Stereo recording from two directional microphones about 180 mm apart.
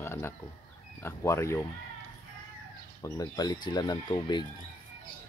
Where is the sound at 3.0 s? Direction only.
20° left (ahead or behind).